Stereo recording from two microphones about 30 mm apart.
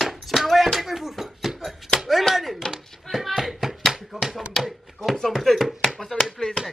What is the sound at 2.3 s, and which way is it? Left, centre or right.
Chopping, centre.